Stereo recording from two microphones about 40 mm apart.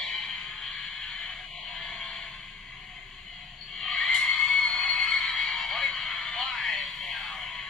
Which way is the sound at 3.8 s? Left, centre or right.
Centre.